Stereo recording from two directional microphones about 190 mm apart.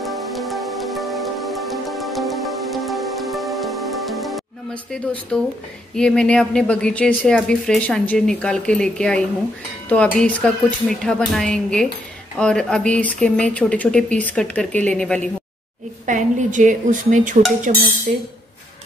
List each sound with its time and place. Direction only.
0.0 s music: centre (ahead or behind)
5.3 s a woman's voice: 5° left (ahead or behind)
16.1 s speech: 40° right (ahead or behind)